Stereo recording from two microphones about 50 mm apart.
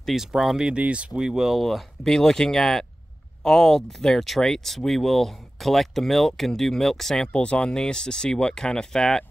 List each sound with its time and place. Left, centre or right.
0.0 s speech: centre
0.6 s speech: right
1.6 s speech: centre
7.3 s speech: left